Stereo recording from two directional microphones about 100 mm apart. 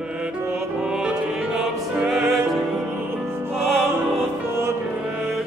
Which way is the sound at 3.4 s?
25° right (ahead or behind).